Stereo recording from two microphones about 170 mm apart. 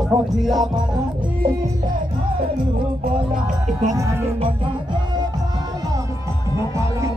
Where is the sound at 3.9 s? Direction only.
20° right (ahead or behind).